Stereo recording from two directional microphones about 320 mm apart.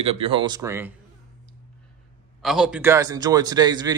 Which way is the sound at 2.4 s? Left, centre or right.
Centre.